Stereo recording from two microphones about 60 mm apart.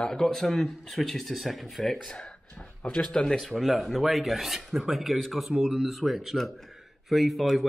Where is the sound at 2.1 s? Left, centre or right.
Centre.